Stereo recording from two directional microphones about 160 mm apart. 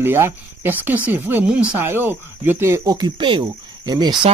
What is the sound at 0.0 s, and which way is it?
Speech, 15° right (ahead or behind).